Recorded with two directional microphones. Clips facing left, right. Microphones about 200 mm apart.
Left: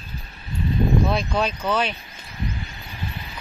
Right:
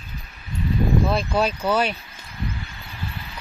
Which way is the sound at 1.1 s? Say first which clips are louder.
Right 1 dB; 5° right (ahead or behind).